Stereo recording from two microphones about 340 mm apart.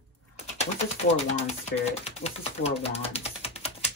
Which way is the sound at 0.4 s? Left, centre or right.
Centre.